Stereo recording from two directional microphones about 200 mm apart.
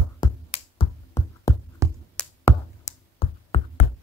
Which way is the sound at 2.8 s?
30° left (ahead or behind).